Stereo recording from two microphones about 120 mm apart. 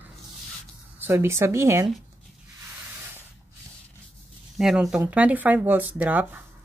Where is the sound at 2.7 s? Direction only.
15° right (ahead or behind).